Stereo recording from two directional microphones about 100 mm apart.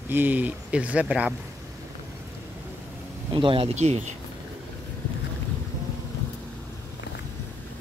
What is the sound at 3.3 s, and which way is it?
Speech, 60° right (ahead or behind).